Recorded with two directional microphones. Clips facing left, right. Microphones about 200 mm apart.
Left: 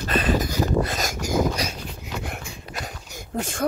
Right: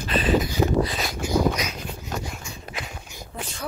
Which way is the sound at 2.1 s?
60° left (ahead or behind).